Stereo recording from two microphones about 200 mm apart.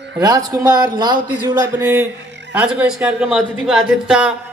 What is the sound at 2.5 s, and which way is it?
Speech, 5° right (ahead or behind).